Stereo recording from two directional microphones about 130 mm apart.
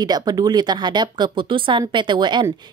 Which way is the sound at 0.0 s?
30° right (ahead or behind).